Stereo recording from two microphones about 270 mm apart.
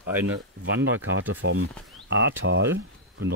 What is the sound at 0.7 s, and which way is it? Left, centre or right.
Speech, right.